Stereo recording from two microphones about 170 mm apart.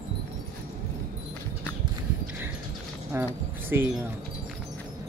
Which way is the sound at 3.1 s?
15° right (ahead or behind).